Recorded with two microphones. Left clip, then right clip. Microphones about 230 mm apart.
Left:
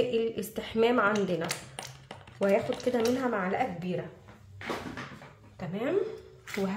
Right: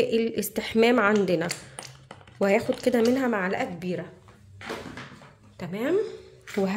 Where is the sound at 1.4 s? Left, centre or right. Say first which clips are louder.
Right 3 dB; centre.